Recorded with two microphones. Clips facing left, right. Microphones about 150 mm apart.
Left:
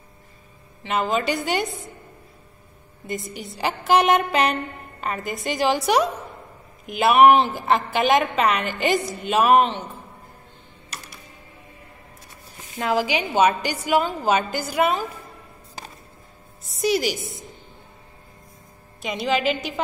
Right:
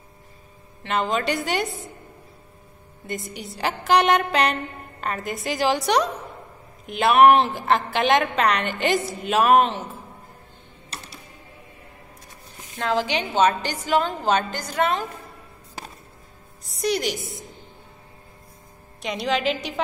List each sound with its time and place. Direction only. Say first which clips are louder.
0.8 s a woman's voice: left 1 dB; centre (ahead or behind)
3.1 s a woman's voice: left 1 dB; centre (ahead or behind)
10.9 s music: right 1 dB; 30° right (ahead or behind)
12.7 s a woman's voice: left 1 dB; 10° left (ahead or behind)
16.6 s a woman's voice: left 2 dB; centre (ahead or behind)
18.9 s a woman's voice: left 1 dB; centre (ahead or behind)